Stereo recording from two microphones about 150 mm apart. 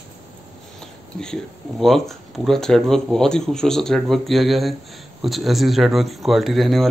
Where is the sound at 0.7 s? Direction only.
5° left (ahead or behind).